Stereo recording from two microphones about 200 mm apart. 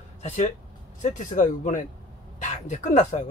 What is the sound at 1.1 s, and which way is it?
Speech, 40° left (ahead or behind).